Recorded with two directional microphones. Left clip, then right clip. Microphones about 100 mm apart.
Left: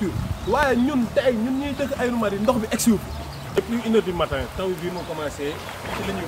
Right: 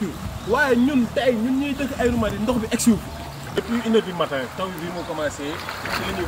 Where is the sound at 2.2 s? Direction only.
30° left (ahead or behind).